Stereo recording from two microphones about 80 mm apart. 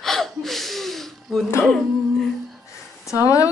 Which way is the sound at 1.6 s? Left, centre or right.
Centre.